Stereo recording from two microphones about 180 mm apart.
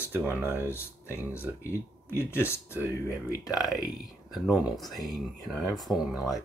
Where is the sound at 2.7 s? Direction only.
10° right (ahead or behind).